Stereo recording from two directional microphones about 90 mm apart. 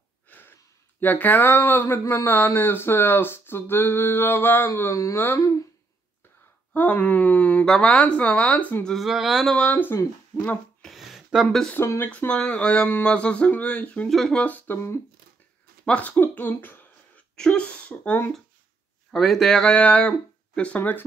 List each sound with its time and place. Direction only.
0.3 s speech: 20° left (ahead or behind)
6.7 s speech: 20° left (ahead or behind)
8.9 s a sound: 5° right (ahead or behind)
9.5 s speech: 15° left (ahead or behind)
10.8 s a sound: centre (ahead or behind)
11.4 s speech: 10° left (ahead or behind)
11.7 s speech: 25° left (ahead or behind)
12.1 s speech: 15° left (ahead or behind)
14.0 s a sound: 5° left (ahead or behind)
14.4 s speech: 20° left (ahead or behind)
15.8 s speech: 15° left (ahead or behind)
17.4 s speech: 10° left (ahead or behind)
19.1 s speech: 5° left (ahead or behind)